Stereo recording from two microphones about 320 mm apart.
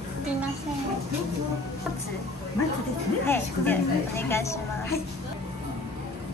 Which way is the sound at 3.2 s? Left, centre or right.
Centre.